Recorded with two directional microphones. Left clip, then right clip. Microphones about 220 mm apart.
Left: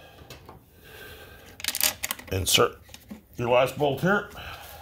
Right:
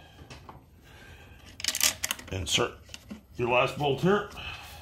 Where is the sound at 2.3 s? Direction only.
45° left (ahead or behind).